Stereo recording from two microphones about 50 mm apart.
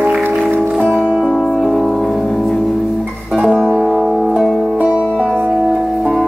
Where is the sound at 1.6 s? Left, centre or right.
Centre.